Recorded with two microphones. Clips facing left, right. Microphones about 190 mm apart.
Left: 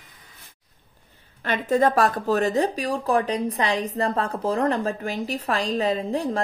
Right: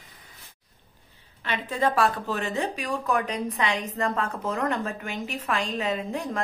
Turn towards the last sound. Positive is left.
turn(degrees=35)  # may be behind; listen again after turning